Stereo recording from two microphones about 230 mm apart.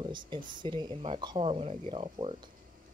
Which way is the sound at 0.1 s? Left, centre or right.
Centre.